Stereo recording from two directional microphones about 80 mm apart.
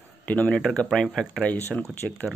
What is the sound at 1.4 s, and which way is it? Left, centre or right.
Speech, centre.